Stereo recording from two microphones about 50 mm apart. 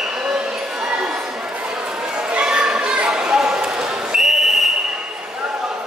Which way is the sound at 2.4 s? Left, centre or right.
Centre.